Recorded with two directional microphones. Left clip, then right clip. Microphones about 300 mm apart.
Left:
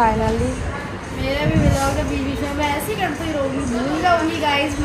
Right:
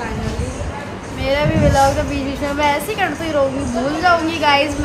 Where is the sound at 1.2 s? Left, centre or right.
Centre.